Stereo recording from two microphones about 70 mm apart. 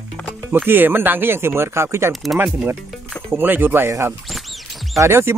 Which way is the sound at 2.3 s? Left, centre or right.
Right.